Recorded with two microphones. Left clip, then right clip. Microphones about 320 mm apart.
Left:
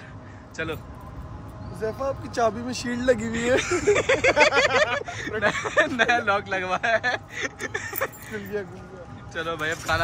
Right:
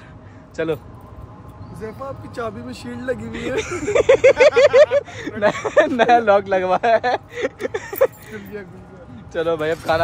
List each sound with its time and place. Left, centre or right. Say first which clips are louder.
0.6 s speech: right 8 dB; centre
2.3 s speech: left 5 dB; left
3.3 s speech: left 1 dB; centre